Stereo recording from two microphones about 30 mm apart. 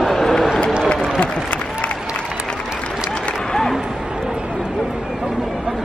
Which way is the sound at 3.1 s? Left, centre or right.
Left.